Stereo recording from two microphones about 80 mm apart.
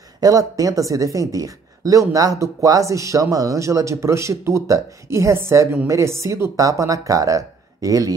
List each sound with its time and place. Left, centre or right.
0.2 s speech: right